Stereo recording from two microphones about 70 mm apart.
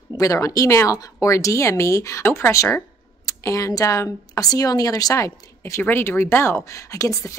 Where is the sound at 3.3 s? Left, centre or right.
Left.